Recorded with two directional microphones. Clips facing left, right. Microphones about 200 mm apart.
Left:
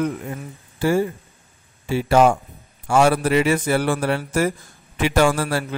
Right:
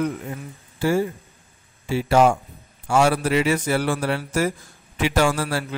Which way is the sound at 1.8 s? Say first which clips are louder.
Left 1 dB; 55° left (ahead or behind).